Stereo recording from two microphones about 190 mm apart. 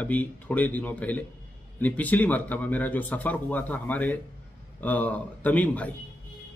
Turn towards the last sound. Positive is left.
turn(degrees=10)  # may be behind; listen again after turning